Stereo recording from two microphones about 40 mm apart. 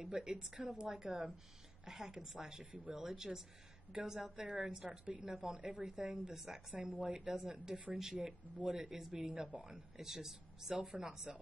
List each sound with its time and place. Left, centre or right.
0.0 s a woman's voice: centre
2.6 s speech: right
2.9 s a woman's voice: centre